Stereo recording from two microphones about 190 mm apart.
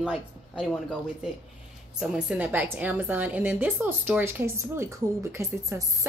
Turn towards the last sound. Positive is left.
turn(degrees=-15)  # may be behind; listen again after turning